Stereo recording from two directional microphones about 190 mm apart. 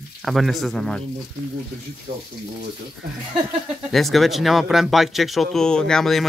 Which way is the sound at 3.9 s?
Centre (ahead or behind).